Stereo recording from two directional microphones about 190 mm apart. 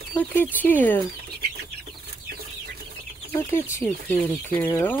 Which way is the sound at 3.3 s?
15° left (ahead or behind).